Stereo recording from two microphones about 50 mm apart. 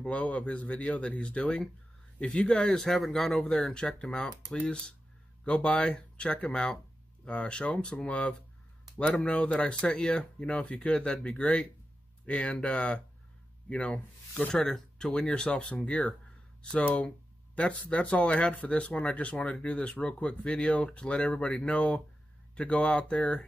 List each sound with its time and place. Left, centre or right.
0.0 s speech: left; by 4.3 s centre
5.4 s speech: left
10.9 s speech: centre
14.5 s speech: centre